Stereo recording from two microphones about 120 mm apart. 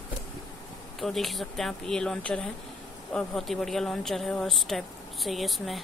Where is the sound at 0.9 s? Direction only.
Centre (ahead or behind).